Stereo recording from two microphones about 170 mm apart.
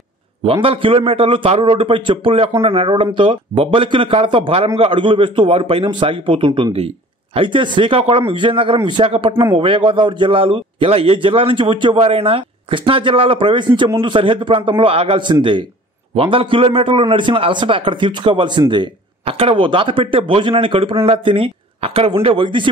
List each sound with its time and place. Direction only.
0.4 s a man's voice: 35° right (ahead or behind)